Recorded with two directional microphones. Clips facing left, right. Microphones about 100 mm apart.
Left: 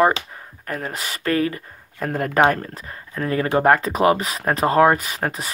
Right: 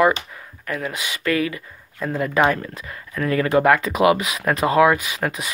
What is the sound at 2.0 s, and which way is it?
Speech, 55° left (ahead or behind).